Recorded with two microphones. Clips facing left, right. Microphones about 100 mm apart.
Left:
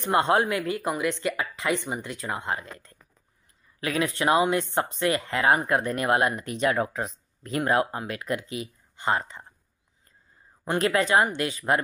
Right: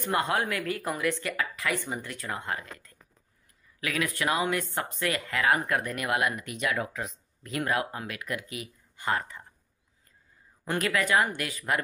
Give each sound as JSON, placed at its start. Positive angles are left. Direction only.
{"t": 0.0, "sound": "speech", "side_deg": 25}
{"t": 10.6, "sound": "speech", "side_deg": 30}